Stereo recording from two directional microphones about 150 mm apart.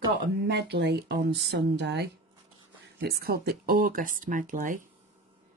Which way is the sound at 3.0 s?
90° right.